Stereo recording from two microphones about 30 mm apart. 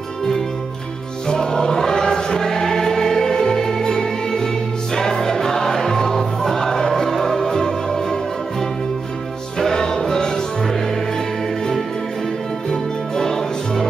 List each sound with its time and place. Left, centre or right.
1.2 s choir: left
4.9 s music: centre
13.1 s music: centre